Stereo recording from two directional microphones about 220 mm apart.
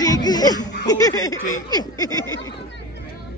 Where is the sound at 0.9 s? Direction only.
15° left (ahead or behind).